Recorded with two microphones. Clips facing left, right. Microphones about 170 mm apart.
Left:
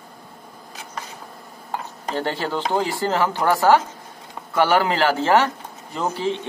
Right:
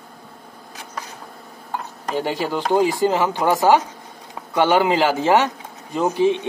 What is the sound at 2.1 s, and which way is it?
Speech, 10° right (ahead or behind).